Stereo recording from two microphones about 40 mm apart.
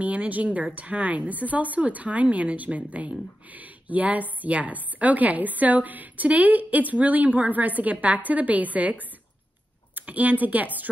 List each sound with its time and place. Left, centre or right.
0.0 s speech: right
9.9 s a woman's voice: right